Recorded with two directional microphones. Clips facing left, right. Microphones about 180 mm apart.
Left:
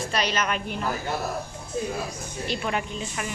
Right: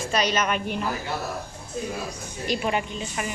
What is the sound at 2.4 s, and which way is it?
Speech, 10° right (ahead or behind).